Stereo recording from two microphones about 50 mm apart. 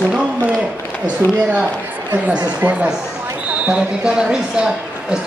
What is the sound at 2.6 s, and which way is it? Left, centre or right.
Speech, right.